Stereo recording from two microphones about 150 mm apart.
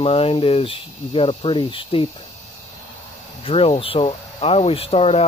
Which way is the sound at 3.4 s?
40° left (ahead or behind).